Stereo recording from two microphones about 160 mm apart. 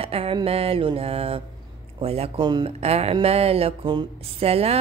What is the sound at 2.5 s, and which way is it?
Speech, 30° right (ahead or behind).